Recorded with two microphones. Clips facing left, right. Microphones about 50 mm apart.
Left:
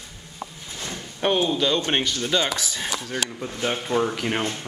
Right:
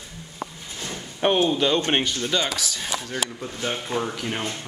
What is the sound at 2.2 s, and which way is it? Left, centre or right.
Speech, centre.